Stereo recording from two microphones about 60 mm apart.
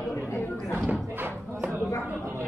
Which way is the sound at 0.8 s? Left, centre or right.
Right.